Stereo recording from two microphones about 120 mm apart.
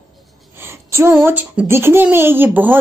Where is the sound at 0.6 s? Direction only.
20° right (ahead or behind).